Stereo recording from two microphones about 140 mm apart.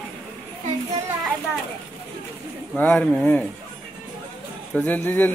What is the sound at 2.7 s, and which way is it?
Speech, 10° left (ahead or behind).